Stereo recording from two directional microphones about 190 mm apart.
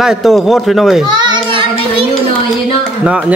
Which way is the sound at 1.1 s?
25° right (ahead or behind).